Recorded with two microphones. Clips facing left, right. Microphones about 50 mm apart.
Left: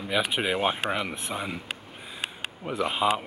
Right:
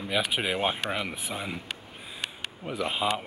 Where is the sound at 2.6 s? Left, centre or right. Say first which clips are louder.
Left 3 dB; centre.